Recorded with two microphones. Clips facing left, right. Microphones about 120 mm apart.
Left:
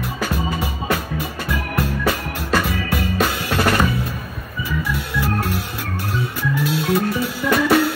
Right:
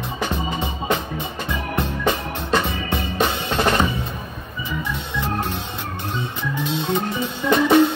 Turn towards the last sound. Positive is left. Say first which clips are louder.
# right 1 dB
turn(degrees=-20)  # may be behind; listen again after turning